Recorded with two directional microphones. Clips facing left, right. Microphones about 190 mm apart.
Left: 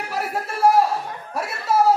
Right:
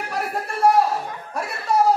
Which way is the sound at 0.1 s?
5° left (ahead or behind).